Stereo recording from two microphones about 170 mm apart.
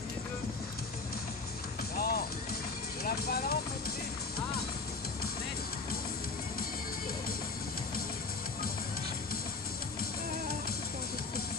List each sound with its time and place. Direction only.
2.0 s music: 65° left (ahead or behind)
3.0 s vehicle: 65° left (ahead or behind)